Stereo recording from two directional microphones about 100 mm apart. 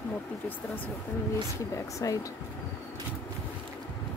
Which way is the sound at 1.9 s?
35° left (ahead or behind).